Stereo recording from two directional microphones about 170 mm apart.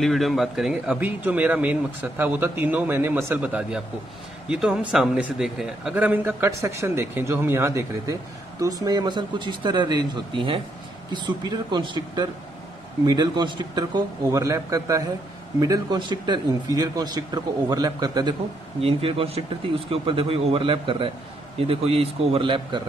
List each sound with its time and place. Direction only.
0.0 s a man's voice: centre (ahead or behind); by 18.3 s 25° right (ahead or behind)
18.8 s speech: 35° right (ahead or behind)